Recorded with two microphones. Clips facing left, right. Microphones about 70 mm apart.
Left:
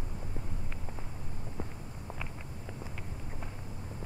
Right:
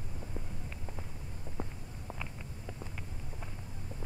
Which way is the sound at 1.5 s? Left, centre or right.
Centre.